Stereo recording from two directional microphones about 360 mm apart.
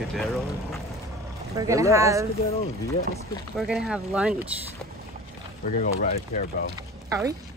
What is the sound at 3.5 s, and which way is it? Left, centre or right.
Speech, centre.